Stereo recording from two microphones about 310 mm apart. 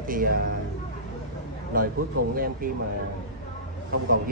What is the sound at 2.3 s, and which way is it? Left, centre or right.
Speech, right.